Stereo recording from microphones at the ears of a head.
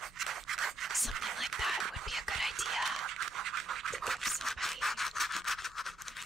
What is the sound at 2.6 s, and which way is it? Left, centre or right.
Toothbrush, right.